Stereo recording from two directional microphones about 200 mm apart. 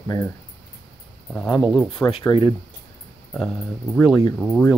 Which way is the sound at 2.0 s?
25° left (ahead or behind).